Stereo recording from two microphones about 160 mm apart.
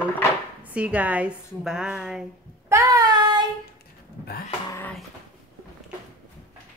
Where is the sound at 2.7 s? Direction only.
20° right (ahead or behind).